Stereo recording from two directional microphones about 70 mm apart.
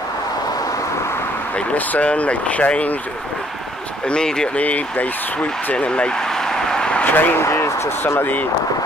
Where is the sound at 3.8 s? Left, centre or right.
Centre.